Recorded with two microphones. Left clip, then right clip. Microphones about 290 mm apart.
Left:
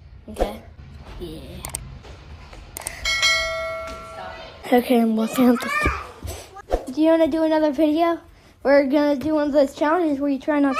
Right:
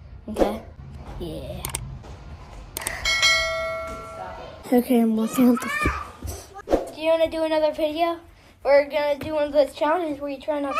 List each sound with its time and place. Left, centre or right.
0.3 s speech: centre
3.0 s bell: centre
4.6 s a woman's voice: centre
5.4 s a sound: centre
7.0 s a sound: left
7.3 s speech: left
9.0 s a woman's voice: left